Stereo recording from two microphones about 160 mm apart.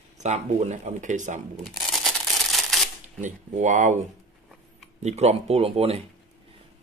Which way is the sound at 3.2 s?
50° right (ahead or behind).